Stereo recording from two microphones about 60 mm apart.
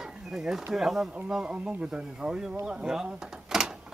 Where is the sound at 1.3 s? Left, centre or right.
Centre.